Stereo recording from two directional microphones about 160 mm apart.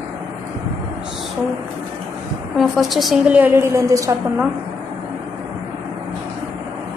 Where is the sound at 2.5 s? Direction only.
Centre (ahead or behind); by 4.5 s 20° right (ahead or behind).